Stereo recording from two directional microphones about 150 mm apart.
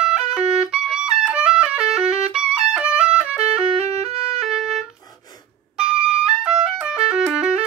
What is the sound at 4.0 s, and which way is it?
Music, 45° right (ahead or behind).